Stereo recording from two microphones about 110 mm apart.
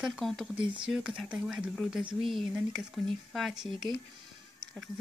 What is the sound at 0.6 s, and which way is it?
Speech, 45° right (ahead or behind).